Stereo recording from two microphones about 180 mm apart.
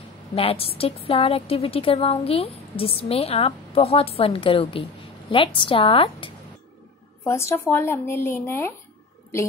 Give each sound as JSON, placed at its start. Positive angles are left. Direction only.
{"t": 0.3, "sound": "a woman's voice", "side_deg": 35}
{"t": 7.2, "sound": "speech", "side_deg": 15}